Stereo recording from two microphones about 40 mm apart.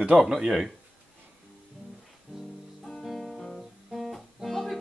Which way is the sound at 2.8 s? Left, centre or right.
Centre.